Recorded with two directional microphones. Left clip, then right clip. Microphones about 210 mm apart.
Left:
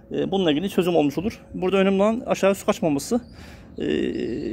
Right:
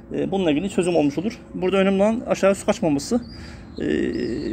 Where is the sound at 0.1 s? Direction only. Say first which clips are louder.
Even; 30° left (ahead or behind).